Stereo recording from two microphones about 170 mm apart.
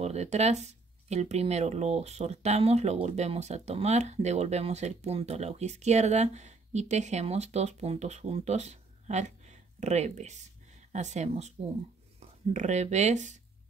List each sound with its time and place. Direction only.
0.0 s speech: 40° right (ahead or behind)